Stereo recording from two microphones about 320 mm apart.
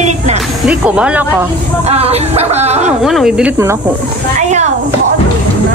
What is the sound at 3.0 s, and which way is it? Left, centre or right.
Speech, centre.